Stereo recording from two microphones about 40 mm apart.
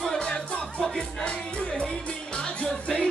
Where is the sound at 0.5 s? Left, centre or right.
Left.